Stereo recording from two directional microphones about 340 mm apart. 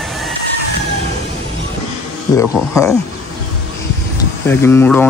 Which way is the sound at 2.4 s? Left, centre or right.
Centre.